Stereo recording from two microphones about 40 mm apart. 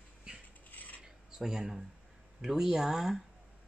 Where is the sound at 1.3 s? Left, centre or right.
Centre.